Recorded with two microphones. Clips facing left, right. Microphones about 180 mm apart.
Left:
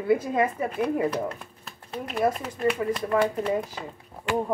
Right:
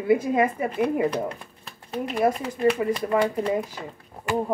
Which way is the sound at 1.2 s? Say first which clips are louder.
Right 1 dB; centre (ahead or behind).